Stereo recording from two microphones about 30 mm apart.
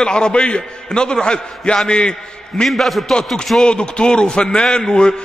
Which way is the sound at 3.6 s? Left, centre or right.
Left.